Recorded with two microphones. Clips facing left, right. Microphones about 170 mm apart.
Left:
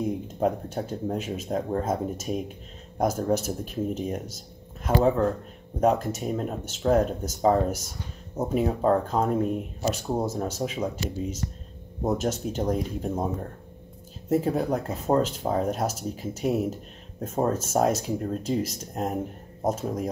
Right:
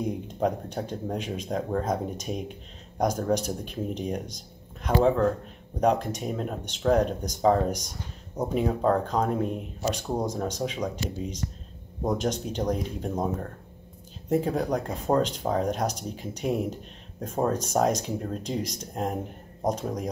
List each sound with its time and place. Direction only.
0.0 s speech: 5° left (ahead or behind)
5.8 s speech: 5° left (ahead or behind)
14.3 s speech: 5° left (ahead or behind)